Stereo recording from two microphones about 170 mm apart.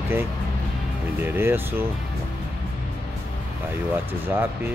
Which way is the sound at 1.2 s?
10° right (ahead or behind).